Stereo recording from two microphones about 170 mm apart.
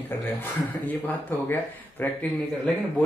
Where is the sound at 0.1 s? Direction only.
10° left (ahead or behind).